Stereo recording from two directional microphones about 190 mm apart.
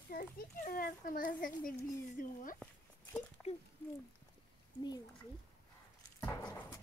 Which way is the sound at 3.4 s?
Centre (ahead or behind).